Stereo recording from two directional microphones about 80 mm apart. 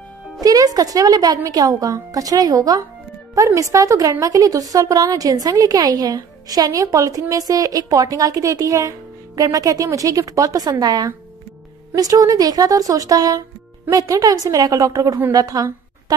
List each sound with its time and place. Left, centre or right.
0.4 s a woman's voice: right
11.9 s a woman's voice: right